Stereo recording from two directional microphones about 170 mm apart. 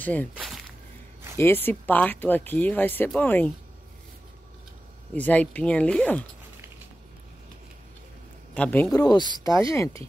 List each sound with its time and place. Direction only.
0.0 s speech: 10° left (ahead or behind)
1.4 s speech: 10° left (ahead or behind)
5.1 s speech: 10° left (ahead or behind)
8.5 s speech: 10° left (ahead or behind)
8.9 s speech: 25° left (ahead or behind)